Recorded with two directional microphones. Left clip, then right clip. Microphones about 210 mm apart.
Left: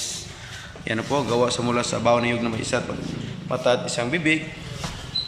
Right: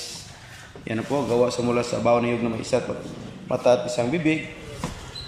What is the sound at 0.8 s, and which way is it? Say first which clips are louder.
A man's voice: left 1 dB; 5° right (ahead or behind).